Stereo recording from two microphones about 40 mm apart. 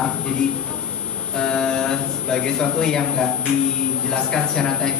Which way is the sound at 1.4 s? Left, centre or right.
Centre.